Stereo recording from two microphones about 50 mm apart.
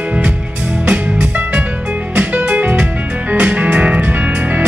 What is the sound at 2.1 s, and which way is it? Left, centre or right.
Music, right.